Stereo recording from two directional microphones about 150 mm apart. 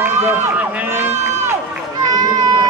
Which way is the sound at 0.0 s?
15° right (ahead or behind).